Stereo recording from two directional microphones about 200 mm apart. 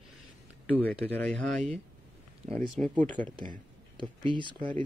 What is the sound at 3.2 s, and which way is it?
Speech, 25° right (ahead or behind).